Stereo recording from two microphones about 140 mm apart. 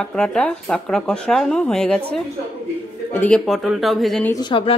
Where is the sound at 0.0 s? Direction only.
5° left (ahead or behind).